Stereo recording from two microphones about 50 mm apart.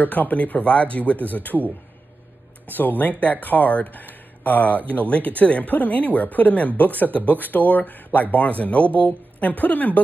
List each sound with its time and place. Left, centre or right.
0.0 s speech: left
2.7 s speech: left